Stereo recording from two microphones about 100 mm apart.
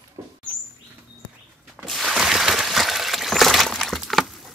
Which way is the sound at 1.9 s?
Centre (ahead or behind).